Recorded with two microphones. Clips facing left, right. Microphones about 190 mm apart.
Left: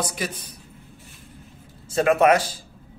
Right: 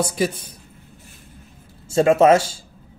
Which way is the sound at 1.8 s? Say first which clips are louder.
Right 4 dB; 25° right (ahead or behind).